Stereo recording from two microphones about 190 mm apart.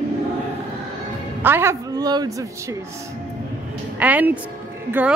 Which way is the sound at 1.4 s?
10° right (ahead or behind).